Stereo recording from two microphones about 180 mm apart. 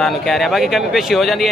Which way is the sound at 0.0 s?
Centre (ahead or behind).